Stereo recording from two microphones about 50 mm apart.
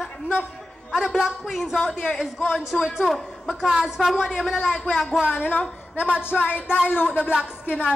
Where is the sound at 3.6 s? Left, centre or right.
Centre.